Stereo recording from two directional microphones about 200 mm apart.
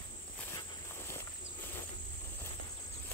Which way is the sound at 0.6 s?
15° left (ahead or behind).